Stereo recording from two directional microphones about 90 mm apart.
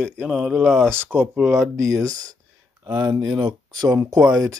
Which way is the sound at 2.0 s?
40° right (ahead or behind).